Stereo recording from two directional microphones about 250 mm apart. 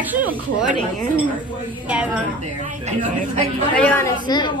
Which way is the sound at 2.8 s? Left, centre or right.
Right.